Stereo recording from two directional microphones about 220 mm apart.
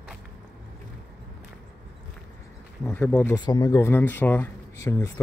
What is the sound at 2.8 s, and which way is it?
Speech, 10° left (ahead or behind).